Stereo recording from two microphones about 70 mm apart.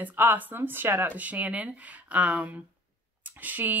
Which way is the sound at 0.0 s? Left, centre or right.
Right.